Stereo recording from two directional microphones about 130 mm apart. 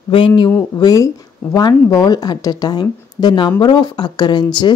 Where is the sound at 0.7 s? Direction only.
30° left (ahead or behind).